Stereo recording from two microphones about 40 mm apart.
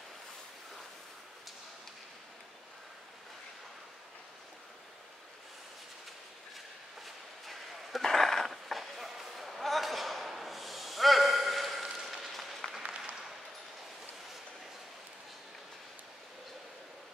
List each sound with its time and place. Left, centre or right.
7.0 s a sound: centre
12.3 s applause: centre
12.8 s applause: centre